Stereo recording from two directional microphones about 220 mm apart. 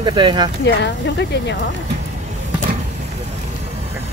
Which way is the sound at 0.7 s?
50° left (ahead or behind).